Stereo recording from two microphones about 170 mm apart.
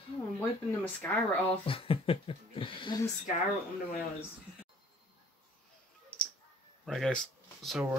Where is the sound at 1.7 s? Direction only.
35° left (ahead or behind).